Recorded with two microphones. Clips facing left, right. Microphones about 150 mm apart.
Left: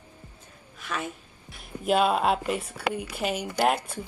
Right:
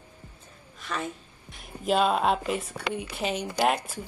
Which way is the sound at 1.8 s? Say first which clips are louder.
Left 1 dB; 5° left (ahead or behind).